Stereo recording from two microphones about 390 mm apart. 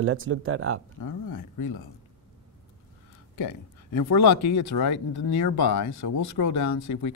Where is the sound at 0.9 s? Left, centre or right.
Left.